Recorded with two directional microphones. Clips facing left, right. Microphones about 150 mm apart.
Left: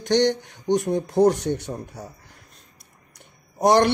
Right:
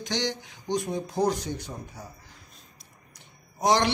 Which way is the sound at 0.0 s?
60° left (ahead or behind).